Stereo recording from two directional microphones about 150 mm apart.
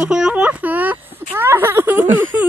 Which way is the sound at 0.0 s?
5° right (ahead or behind).